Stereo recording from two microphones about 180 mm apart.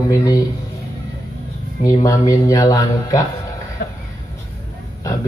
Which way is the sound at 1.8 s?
20° left (ahead or behind).